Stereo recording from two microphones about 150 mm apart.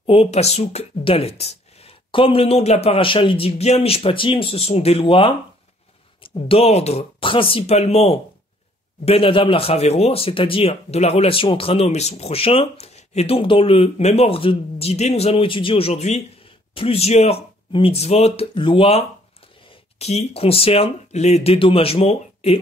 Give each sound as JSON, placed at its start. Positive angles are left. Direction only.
{"t": 0.0, "sound": "speech", "side_deg": 40}